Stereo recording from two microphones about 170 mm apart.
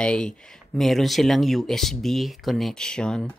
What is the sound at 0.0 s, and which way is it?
Speech, 5° left (ahead or behind).